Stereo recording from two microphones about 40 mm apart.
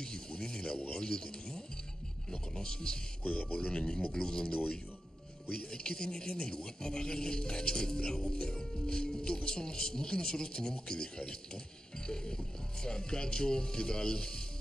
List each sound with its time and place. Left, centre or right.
0.0 s a sound: centre
0.8 s a man's voice: centre
3.3 s speech: left
3.5 s a man's voice: left